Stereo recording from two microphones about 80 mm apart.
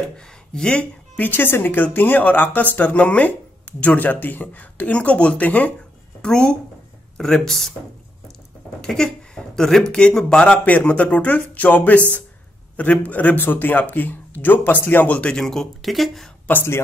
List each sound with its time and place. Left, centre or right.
0.5 s speech: centre
8.8 s speech: centre
16.5 s speech: centre